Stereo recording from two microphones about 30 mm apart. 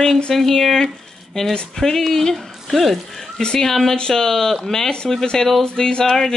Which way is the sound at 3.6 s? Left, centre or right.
Centre.